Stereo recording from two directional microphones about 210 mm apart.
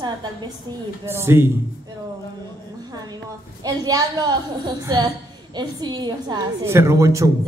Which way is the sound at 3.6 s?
20° right (ahead or behind).